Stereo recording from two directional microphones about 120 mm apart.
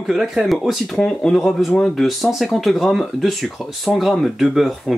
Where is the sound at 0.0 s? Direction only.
Centre (ahead or behind).